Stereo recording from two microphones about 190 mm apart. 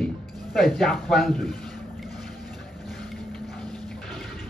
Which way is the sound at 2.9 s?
Centre (ahead or behind).